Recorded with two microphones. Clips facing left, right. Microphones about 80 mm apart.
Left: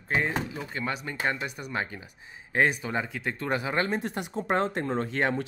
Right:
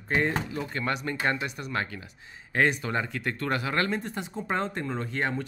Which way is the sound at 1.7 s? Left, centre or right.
Centre.